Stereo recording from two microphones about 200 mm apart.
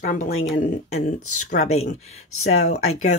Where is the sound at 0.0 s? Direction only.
40° left (ahead or behind).